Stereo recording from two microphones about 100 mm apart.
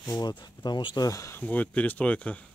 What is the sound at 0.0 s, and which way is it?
Speech, 45° left (ahead or behind).